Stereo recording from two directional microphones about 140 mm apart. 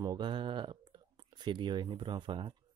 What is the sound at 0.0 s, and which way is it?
Speech, 30° right (ahead or behind).